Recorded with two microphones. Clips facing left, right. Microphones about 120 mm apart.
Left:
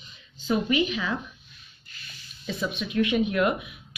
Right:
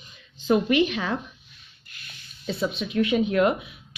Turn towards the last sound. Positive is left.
turn(degrees=-30)  # may be behind; listen again after turning